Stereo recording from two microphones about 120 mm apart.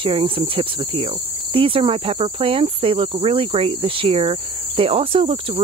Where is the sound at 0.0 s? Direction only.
50° right (ahead or behind).